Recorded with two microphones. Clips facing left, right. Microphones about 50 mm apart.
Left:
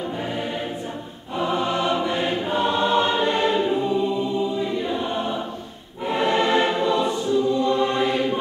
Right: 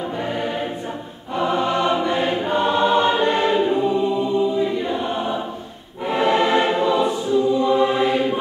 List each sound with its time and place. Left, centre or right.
1.3 s choir: centre